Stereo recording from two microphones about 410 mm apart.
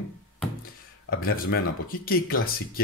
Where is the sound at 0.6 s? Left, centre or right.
Left.